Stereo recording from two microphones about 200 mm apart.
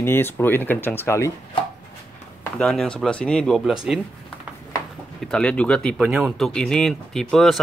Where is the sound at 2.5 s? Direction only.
Centre (ahead or behind).